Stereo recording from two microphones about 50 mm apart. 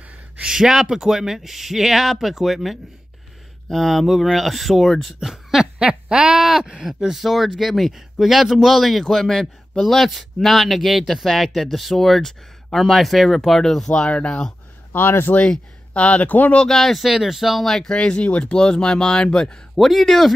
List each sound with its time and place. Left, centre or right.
0.4 s speech: centre
5.3 s a sound: centre
5.9 s speech: centre; by 14.5 s left
15.0 s speech: left
15.9 s speech: left
16.6 s speech: centre
17.8 s speech: centre
19.8 s speech: centre